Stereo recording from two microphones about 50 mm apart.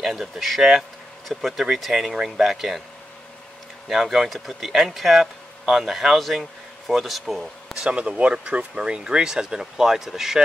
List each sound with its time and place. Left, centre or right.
0.0 s speech: centre
3.9 s speech: centre
7.8 s speech: centre
8.7 s speech: centre